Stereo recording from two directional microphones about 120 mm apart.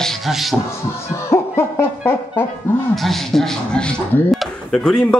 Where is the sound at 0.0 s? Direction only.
Centre (ahead or behind).